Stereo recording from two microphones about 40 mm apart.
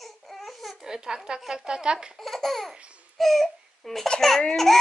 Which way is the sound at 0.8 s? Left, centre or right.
Centre.